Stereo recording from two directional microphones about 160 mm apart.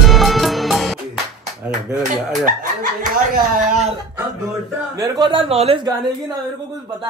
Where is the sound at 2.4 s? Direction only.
60° right (ahead or behind).